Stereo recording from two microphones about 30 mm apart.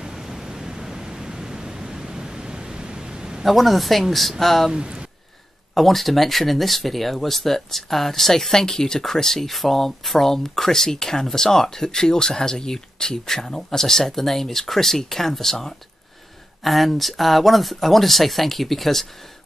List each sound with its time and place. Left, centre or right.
0.0 s pink noise: centre
3.4 s speech: centre
4.7 s speech: right
5.8 s speech: centre
16.6 s speech: centre